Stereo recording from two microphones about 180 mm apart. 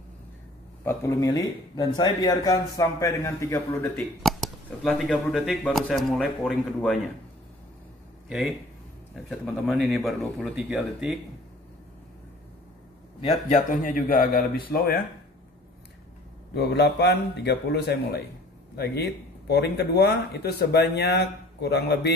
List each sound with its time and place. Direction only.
0.8 s speech: 15° left (ahead or behind)
4.2 s speech: centre (ahead or behind)
9.1 s speech: centre (ahead or behind)
13.5 s speech: 50° left (ahead or behind)
16.5 s speech: 65° left (ahead or behind)